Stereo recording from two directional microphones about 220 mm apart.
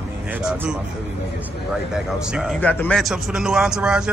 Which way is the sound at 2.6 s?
5° left (ahead or behind).